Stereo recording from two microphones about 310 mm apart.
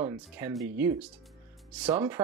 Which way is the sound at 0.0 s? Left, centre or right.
Centre.